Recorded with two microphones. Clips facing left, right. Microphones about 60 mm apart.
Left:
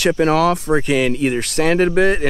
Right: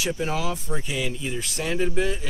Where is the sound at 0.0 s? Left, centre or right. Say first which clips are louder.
Left 12 dB; left.